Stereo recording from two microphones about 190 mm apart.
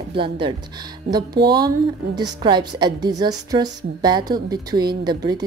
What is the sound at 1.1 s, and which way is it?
Speech, 55° right (ahead or behind).